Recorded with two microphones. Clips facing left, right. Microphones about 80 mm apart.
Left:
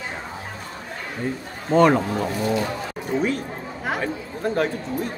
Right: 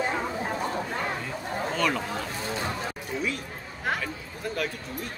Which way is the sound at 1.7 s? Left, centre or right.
Left.